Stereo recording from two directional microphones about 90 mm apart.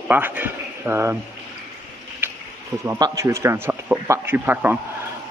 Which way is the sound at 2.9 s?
35° right (ahead or behind).